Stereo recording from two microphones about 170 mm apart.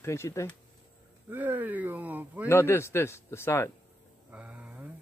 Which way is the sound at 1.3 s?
10° right (ahead or behind).